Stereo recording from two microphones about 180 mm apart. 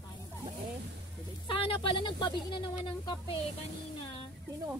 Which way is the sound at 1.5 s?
30° left (ahead or behind).